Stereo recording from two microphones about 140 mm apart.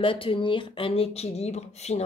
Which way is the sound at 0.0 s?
40° left (ahead or behind).